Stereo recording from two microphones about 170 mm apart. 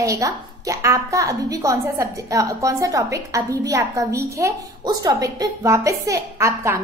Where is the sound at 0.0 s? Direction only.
20° right (ahead or behind).